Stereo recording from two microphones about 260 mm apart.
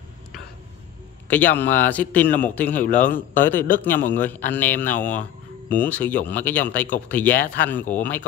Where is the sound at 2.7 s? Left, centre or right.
Left.